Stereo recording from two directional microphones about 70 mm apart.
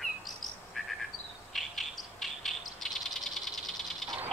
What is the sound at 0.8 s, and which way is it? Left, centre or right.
Frog, centre.